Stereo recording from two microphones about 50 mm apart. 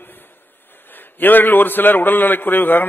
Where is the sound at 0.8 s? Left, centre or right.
Left.